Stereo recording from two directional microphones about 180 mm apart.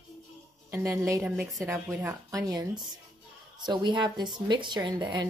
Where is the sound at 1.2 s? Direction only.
5° right (ahead or behind); by 5.2 s 25° right (ahead or behind).